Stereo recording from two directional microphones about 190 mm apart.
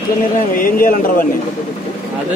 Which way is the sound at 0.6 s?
45° left (ahead or behind).